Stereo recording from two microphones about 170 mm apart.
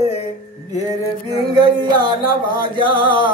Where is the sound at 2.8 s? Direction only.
30° right (ahead or behind).